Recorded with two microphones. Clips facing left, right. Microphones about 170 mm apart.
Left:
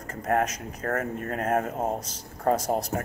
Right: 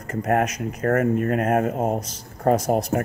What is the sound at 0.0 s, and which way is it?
Speech, 65° right (ahead or behind).